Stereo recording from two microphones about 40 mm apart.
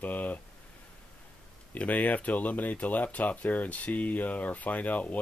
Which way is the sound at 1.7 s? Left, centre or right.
Left.